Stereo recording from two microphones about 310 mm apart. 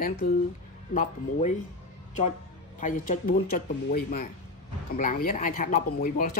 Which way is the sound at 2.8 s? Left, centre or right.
Left.